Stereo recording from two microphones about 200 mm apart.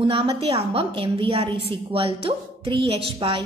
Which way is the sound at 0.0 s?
30° right (ahead or behind).